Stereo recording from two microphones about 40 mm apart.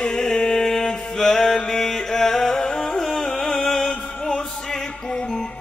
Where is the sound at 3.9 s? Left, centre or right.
Left.